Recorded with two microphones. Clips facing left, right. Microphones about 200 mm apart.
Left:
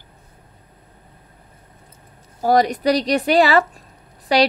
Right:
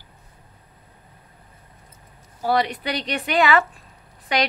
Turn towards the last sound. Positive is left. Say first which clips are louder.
# left 7 dB
turn(degrees=35)  # may be behind; listen again after turning